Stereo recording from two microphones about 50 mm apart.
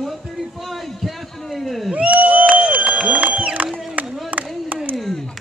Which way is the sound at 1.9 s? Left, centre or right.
Right.